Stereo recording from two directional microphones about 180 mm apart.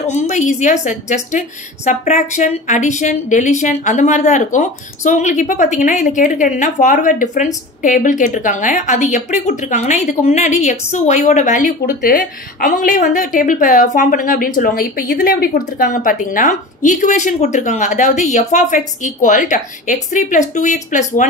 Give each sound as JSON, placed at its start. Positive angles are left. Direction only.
{"t": 0.0, "sound": "a woman's voice", "side_deg": 40}
{"t": 11.9, "sound": "a woman's voice", "side_deg": 55}